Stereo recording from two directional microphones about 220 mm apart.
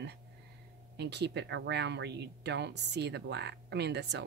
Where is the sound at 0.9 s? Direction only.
50° right (ahead or behind).